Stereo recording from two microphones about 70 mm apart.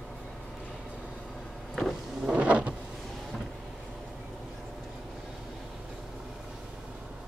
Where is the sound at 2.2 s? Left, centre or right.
Centre.